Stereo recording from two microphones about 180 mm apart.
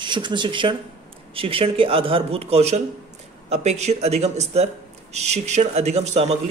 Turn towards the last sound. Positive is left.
turn(degrees=-35)  # may be behind; listen again after turning